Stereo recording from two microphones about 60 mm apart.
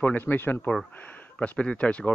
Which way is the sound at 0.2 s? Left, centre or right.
Left.